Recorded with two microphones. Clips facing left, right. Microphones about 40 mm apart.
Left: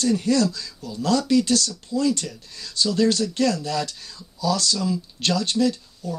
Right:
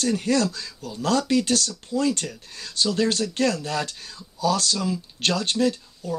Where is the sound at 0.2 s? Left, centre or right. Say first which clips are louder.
Left 2 dB; right.